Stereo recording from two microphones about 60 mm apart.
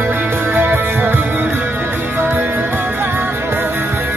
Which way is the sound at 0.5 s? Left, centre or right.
Right.